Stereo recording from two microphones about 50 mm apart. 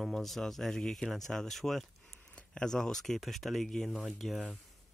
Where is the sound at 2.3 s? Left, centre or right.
Centre.